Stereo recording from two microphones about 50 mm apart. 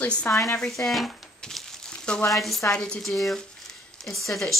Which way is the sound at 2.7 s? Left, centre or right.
Centre.